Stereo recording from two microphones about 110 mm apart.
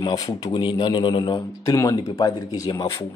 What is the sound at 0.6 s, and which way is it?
Speech, 50° left (ahead or behind).